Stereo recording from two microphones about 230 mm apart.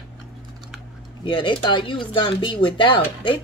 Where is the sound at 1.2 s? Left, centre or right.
Left.